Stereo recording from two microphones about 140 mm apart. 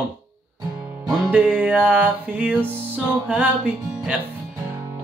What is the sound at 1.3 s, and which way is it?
Music, 10° right (ahead or behind).